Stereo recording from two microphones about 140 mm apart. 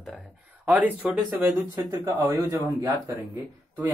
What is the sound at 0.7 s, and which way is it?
Speech, 10° right (ahead or behind).